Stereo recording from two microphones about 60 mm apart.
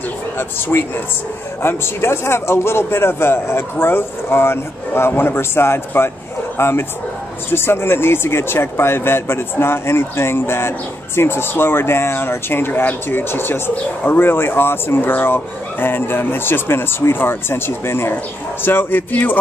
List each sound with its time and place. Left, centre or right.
0.4 s a man's voice: left